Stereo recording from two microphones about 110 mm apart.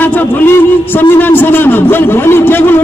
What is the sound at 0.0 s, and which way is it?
A man's voice, 20° left (ahead or behind).